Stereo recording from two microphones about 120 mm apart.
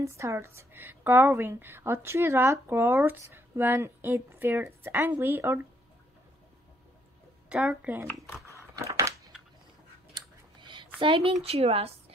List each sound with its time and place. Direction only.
0.0 s a woman's voice: 25° right (ahead or behind)
7.4 s speech: 10° right (ahead or behind)
8.7 s crushing: 25° right (ahead or behind)
10.1 s a sound: 40° right (ahead or behind)
11.4 s a woman's voice: 55° right (ahead or behind)